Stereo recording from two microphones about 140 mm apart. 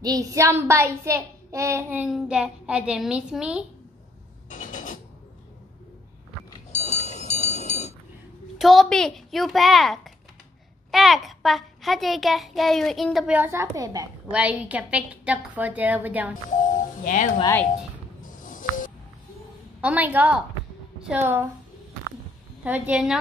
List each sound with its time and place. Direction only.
0.0 s a child's voice: 25° right (ahead or behind)
2.0 s a woman's voice: 5° right (ahead or behind)
4.5 s a sound: 65° left (ahead or behind)
6.7 s a sound: 55° left (ahead or behind)
8.5 s a child's voice: centre (ahead or behind)
13.4 s a child's voice: 20° right (ahead or behind)
14.3 s a woman's voice: 10° right (ahead or behind)
16.4 s speech: 65° left (ahead or behind)
18.4 s music: 70° left (ahead or behind)
19.8 s a woman's voice: 10° right (ahead or behind)
22.6 s a woman's voice: 10° right (ahead or behind)